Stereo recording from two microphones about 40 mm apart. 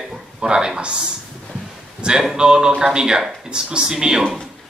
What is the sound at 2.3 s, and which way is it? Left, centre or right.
Speech, right.